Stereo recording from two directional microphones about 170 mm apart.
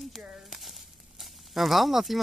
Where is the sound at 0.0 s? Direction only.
Centre (ahead or behind).